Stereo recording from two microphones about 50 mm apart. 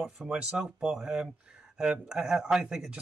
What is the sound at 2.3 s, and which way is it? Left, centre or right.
Speech, centre.